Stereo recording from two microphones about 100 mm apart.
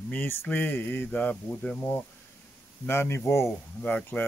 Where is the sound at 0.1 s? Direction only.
20° left (ahead or behind).